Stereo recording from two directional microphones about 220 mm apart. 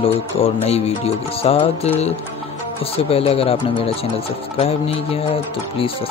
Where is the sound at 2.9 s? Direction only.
25° left (ahead or behind).